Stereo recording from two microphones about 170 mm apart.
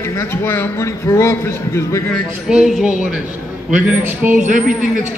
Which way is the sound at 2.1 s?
5° right (ahead or behind).